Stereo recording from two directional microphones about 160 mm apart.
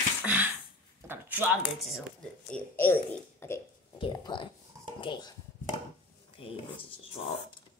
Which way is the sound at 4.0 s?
30° left (ahead or behind).